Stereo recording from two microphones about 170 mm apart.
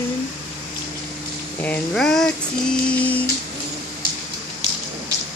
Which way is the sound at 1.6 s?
5° left (ahead or behind).